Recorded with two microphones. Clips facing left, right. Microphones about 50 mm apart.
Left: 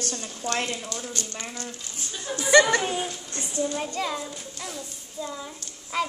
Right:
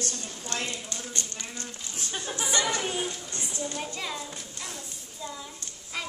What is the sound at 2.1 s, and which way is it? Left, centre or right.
Speech, right.